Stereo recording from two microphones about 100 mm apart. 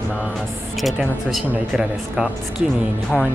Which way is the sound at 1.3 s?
5° right (ahead or behind).